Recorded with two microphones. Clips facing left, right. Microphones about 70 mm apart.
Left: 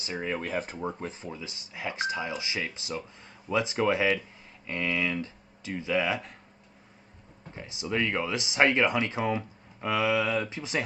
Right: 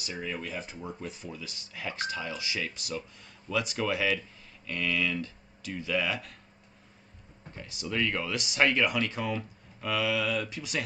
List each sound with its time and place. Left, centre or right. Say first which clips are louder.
0.0 s speech: left 4 dB; left
7.5 s speech: left 2 dB; left